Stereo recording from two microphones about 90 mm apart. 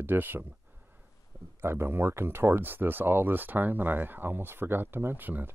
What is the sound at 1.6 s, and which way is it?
Speech, 30° right (ahead or behind).